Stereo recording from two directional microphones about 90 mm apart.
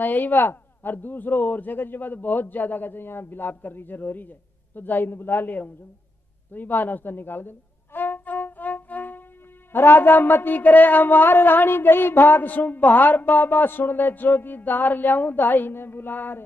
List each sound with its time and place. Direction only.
0.0 s a man's voice: 20° left (ahead or behind)
6.5 s music: 20° left (ahead or behind)
9.7 s a man's voice: 25° left (ahead or behind)